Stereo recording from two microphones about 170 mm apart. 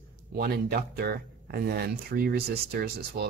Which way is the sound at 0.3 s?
65° right (ahead or behind).